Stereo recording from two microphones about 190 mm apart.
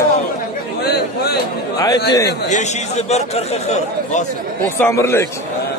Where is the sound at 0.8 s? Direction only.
55° left (ahead or behind).